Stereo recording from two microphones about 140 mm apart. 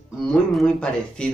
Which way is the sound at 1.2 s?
5° left (ahead or behind).